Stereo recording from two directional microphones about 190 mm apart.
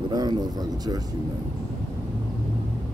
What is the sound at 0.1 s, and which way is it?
Speech, 20° right (ahead or behind).